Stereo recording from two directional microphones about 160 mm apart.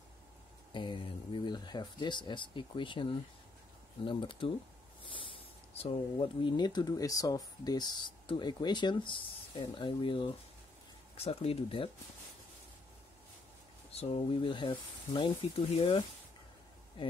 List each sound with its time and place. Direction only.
0.7 s speech: 30° left (ahead or behind)
13.9 s speech: 35° left (ahead or behind)